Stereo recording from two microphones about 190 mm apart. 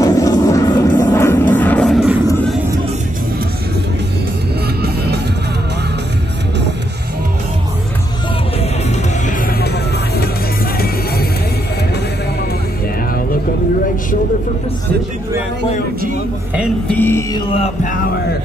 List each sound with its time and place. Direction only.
0.0 s vehicle: 20° left (ahead or behind); by 2.1 s centre (ahead or behind)
4.8 s music: 60° right (ahead or behind)
16.8 s music: 10° left (ahead or behind)